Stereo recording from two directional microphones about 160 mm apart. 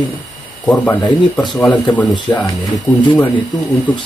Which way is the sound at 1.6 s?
10° left (ahead or behind).